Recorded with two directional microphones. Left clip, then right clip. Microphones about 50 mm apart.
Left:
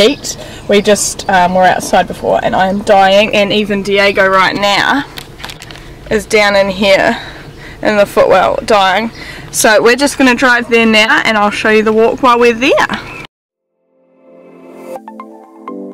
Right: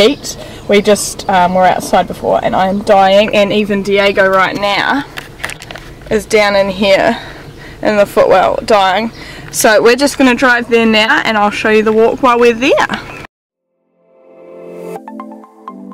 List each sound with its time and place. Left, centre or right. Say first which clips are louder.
0.0 s speech: even; centre
4.0 s speech: left 1 dB; left
4.4 s speech: left 2 dB; left
6.0 s speech: left 1 dB; centre